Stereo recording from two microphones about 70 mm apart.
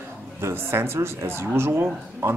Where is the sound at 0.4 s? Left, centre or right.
Right.